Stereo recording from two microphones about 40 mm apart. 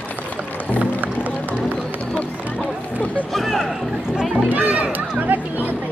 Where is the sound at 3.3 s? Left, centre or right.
Centre.